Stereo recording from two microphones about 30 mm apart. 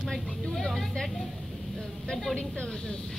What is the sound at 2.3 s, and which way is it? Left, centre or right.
Speech, left.